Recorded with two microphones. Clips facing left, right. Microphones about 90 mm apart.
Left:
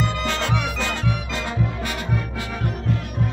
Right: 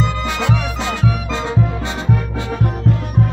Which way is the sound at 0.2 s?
20° right (ahead or behind).